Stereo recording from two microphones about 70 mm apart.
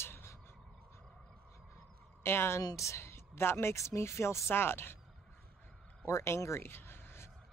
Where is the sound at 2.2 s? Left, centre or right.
Left.